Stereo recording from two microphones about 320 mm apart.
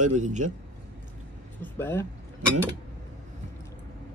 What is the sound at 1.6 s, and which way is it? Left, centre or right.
Speech, centre.